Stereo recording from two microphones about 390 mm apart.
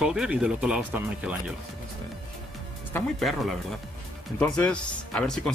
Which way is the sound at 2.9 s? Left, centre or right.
Centre.